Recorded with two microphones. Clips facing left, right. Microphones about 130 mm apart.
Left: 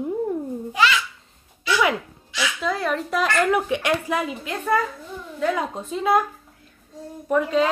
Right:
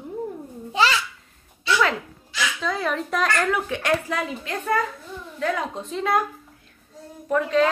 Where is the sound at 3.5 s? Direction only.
15° left (ahead or behind).